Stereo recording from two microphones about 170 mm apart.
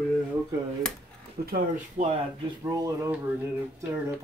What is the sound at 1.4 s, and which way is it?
Speech, 65° right (ahead or behind).